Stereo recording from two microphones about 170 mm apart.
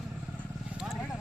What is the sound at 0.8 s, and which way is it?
Vehicle, centre (ahead or behind).